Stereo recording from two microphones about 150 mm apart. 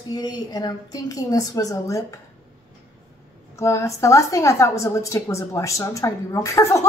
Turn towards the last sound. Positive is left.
turn(degrees=20)  # may be behind; listen again after turning